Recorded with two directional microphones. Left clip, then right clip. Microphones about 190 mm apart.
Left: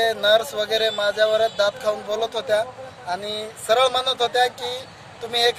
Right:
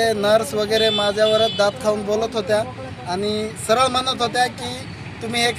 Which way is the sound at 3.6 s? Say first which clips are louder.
Even; 10° left (ahead or behind).